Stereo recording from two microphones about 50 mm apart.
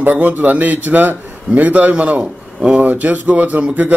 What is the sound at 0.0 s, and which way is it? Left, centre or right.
A man's voice, right.